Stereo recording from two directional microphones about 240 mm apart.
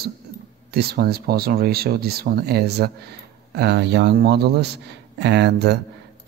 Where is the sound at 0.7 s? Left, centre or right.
Right.